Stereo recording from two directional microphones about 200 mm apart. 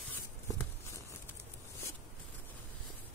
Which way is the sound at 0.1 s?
10° left (ahead or behind).